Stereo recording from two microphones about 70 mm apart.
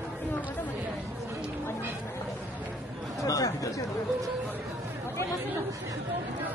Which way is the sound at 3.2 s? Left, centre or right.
Left.